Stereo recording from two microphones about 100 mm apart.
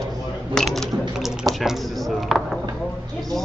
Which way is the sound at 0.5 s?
5° left (ahead or behind).